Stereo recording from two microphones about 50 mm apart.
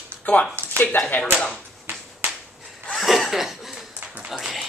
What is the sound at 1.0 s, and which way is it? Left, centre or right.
Speech, left.